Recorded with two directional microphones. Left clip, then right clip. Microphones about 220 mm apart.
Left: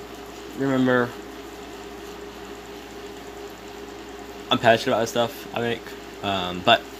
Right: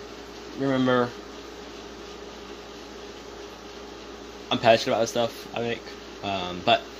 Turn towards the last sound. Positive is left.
turn(degrees=15)  # may be behind; listen again after turning